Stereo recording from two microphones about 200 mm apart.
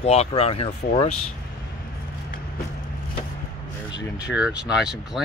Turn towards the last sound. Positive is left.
turn(degrees=-5)  # may be behind; listen again after turning